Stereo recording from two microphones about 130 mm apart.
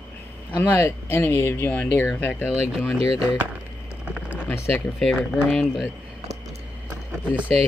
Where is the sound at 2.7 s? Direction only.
5° right (ahead or behind).